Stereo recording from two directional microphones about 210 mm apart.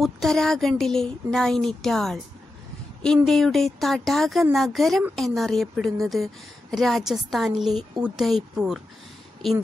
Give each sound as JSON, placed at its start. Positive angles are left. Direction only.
{"t": 0.0, "sound": "speech", "side_deg": 0}
{"t": 3.3, "sound": "speech", "side_deg": 0}